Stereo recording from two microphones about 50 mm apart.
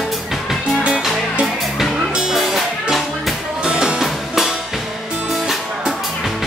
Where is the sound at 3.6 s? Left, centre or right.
Centre.